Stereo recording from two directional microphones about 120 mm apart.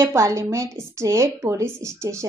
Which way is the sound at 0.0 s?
25° right (ahead or behind).